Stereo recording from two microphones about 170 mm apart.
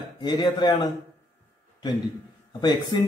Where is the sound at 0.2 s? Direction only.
25° left (ahead or behind).